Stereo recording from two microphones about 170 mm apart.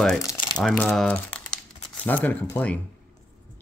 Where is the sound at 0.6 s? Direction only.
5° left (ahead or behind).